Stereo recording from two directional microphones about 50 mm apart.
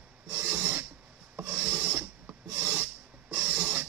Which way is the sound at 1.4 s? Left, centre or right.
Right.